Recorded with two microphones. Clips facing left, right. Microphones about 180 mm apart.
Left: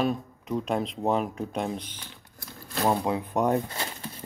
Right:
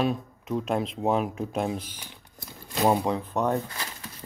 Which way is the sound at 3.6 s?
25° left (ahead or behind).